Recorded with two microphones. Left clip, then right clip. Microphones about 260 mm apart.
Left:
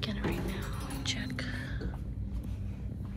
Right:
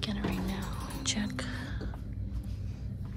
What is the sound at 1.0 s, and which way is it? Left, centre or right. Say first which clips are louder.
Whispering: right 2 dB; right.